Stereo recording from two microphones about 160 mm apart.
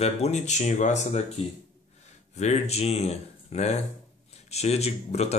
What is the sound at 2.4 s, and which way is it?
Speech, 45° left (ahead or behind).